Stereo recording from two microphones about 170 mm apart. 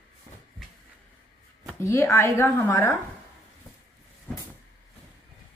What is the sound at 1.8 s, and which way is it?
A woman's voice, 15° left (ahead or behind).